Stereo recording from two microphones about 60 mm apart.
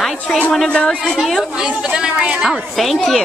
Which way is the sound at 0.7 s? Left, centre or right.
Centre.